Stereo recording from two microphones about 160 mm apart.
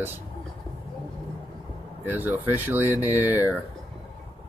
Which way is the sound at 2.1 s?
10° right (ahead or behind).